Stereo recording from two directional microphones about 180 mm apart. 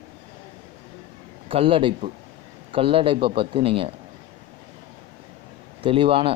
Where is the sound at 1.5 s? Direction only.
30° right (ahead or behind).